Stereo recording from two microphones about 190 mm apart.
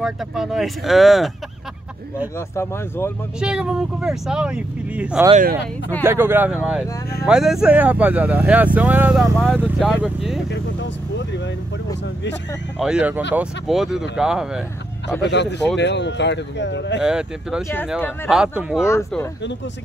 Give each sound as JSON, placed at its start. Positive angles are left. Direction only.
{"t": 0.0, "sound": "speech", "side_deg": 0}
{"t": 2.5, "sound": "speech", "side_deg": 15}
{"t": 3.3, "sound": "speech", "side_deg": -5}
{"t": 5.3, "sound": "speech", "side_deg": -45}
{"t": 6.0, "sound": "speech", "side_deg": -10}
{"t": 10.5, "sound": "speech", "side_deg": 65}
{"t": 12.7, "sound": "speech", "side_deg": -5}
{"t": 15.8, "sound": "speech", "side_deg": 65}
{"t": 17.0, "sound": "speech", "side_deg": -5}
{"t": 18.9, "sound": "speech", "side_deg": 15}